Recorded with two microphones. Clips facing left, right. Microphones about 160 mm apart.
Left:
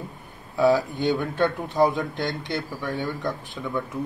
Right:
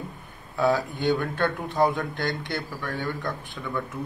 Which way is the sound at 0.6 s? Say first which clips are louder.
Left 4 dB; 20° left (ahead or behind).